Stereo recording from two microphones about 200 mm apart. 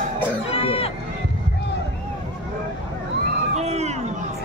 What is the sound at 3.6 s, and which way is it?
Crowd, 35° right (ahead or behind).